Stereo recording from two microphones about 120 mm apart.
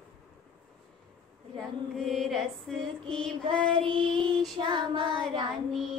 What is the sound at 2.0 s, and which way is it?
Female singing, centre (ahead or behind).